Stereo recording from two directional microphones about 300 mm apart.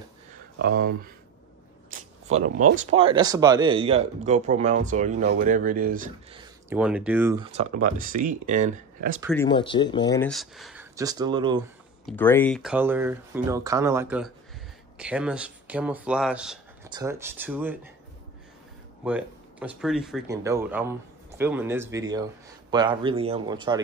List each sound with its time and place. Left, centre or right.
0.6 s speech: right
1.9 s a sound: right
2.4 s speech: right
2.7 s speech: right
6.4 s speech: centre
7.5 s speech: right
9.3 s speech: centre
12.1 s speech: centre
19.0 s speech: centre